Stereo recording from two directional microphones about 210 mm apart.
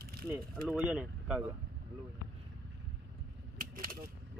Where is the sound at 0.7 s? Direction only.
5° right (ahead or behind).